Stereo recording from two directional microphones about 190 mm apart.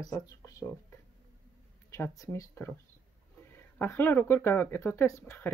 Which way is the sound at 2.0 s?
15° left (ahead or behind).